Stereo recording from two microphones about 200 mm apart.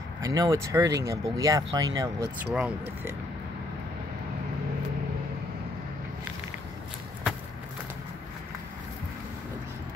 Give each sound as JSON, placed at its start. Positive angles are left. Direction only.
{"t": 0.2, "sound": "speech", "side_deg": -15}
{"t": 2.5, "sound": "speech", "side_deg": -5}